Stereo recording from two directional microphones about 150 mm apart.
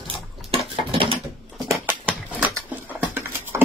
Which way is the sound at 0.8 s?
35° right (ahead or behind).